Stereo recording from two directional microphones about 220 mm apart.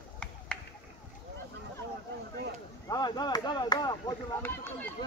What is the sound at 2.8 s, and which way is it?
Speech, 20° left (ahead or behind).